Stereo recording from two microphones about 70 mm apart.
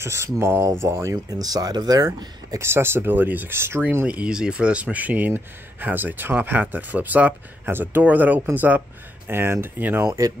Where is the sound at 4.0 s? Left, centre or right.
Centre.